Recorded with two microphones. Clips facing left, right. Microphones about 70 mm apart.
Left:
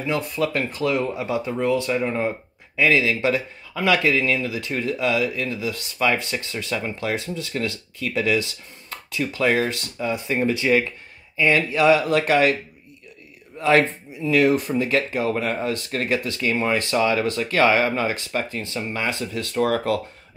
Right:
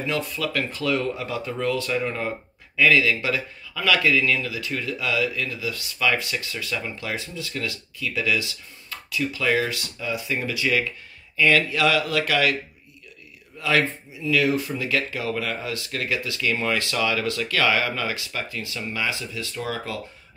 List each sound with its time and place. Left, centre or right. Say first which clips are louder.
0.3 s speech: left 3 dB; left
13.6 s speech: left 5 dB; left